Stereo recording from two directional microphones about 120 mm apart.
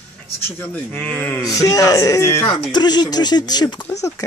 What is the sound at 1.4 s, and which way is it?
Speech, 30° left (ahead or behind).